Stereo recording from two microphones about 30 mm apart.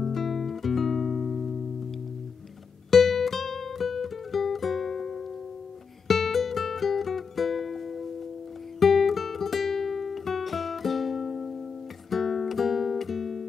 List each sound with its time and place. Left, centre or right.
0.0 s music: centre
2.9 s music: centre
12.1 s guitar: centre